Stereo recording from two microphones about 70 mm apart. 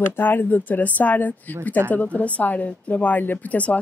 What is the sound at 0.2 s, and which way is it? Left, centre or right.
A woman's voice, left.